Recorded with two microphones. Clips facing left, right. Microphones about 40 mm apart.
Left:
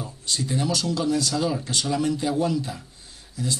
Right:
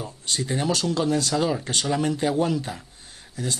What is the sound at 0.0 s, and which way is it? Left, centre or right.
Speech, right.